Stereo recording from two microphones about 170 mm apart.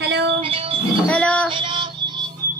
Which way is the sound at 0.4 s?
35° right (ahead or behind).